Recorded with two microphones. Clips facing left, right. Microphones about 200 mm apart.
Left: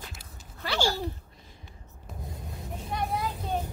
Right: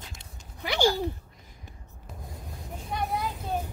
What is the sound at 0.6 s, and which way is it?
Speech, 15° right (ahead or behind).